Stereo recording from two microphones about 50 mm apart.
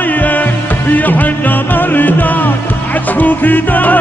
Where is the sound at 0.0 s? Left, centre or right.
Left.